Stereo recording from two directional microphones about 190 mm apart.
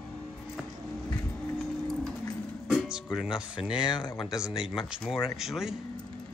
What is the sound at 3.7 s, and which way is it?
Speech, 25° left (ahead or behind).